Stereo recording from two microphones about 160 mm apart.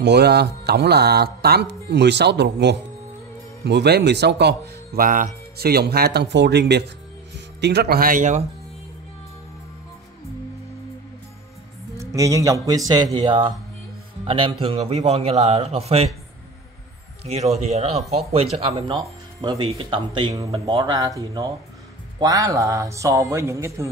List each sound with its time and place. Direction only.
0.0 s speech: 90° right; by 8.5 s 50° right (ahead or behind)
12.0 s a man's voice: 20° right (ahead or behind); by 16.1 s 40° right (ahead or behind)
17.2 s a man's voice: 40° right (ahead or behind); by 23.9 s 20° right (ahead or behind)